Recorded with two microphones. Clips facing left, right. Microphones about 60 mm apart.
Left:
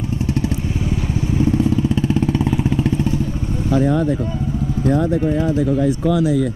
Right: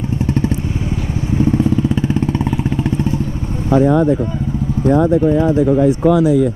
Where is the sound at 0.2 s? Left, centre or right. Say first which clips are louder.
Right 4 dB; right.